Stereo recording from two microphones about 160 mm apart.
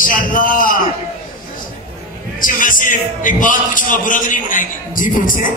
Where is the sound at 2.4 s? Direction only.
55° left (ahead or behind).